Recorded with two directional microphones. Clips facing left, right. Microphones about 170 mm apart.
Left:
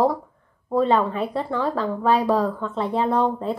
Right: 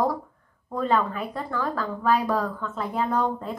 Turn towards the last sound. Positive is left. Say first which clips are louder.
# left 4 dB
turn(degrees=30)  # may be behind; listen again after turning